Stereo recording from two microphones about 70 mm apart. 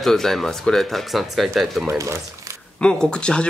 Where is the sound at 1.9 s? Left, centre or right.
Right.